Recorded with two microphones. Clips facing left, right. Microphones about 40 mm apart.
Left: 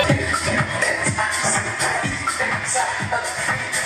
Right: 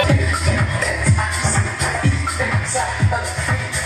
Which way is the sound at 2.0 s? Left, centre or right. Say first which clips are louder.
Right 1 dB; centre.